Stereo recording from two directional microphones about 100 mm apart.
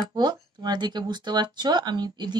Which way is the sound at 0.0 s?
40° right (ahead or behind).